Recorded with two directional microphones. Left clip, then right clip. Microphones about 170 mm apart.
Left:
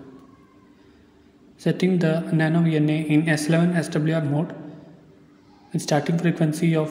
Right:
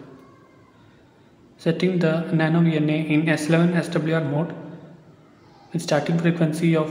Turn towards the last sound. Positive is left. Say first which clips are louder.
# right 1 dB
turn(degrees=30)  # may be behind; listen again after turning